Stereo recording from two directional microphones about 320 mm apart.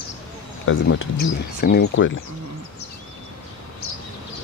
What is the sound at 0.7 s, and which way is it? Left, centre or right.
Speech, left.